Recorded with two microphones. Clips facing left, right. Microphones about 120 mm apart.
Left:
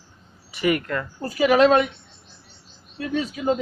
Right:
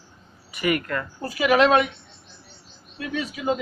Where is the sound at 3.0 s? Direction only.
35° left (ahead or behind).